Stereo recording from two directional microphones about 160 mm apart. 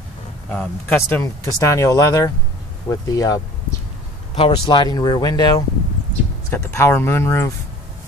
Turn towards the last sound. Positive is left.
turn(degrees=15)  # may be behind; listen again after turning